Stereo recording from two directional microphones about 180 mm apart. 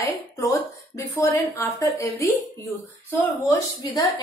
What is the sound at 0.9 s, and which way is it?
A woman's voice, 15° left (ahead or behind).